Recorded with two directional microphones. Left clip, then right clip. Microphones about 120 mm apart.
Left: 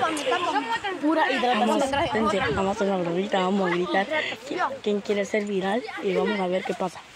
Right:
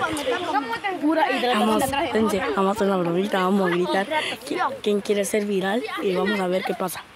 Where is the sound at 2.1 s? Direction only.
70° right (ahead or behind).